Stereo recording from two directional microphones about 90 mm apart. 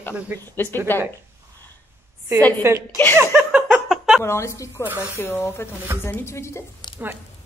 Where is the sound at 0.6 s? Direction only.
25° left (ahead or behind).